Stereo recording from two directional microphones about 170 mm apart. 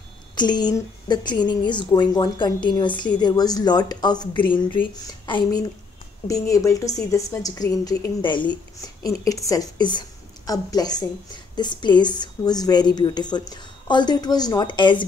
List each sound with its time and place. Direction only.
0.4 s a woman's voice: 25° left (ahead or behind)